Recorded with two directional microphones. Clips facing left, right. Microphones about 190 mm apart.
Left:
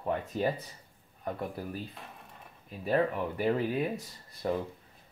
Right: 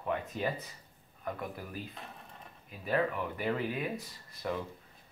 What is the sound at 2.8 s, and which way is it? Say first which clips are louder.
Speech: left 3 dB; 30° left (ahead or behind).